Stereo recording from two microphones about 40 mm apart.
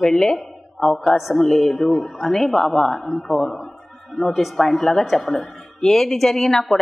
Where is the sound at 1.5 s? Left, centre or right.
Centre.